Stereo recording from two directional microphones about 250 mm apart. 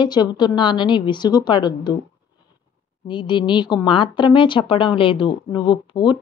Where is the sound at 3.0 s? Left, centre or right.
Centre.